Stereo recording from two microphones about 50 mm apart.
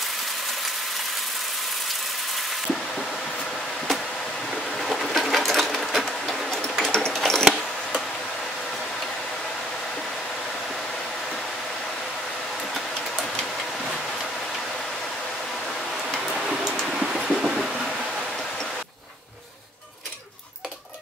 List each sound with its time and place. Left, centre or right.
4.7 s sewing machine: centre
16.1 s tick-tock: centre
16.8 s a sound: centre